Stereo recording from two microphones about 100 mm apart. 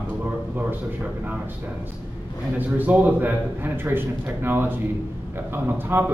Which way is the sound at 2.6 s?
15° right (ahead or behind).